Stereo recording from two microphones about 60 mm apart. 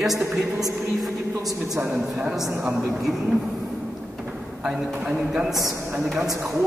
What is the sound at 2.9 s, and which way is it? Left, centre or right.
Speech, centre.